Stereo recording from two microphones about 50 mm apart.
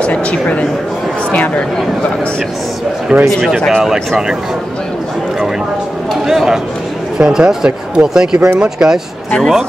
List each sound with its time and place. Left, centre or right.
0.0 s a man's voice: left
3.1 s speech: right
3.6 s speech: centre
6.2 s speech: centre